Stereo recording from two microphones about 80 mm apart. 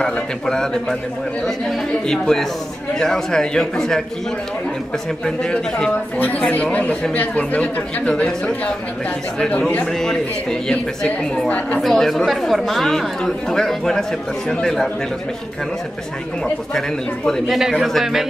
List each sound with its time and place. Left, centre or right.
0.0 s speech: centre
2.0 s speech: centre
5.2 s speech: centre
6.1 s speech: left
9.9 s speech: centre
11.8 s speech: centre
17.5 s speech: centre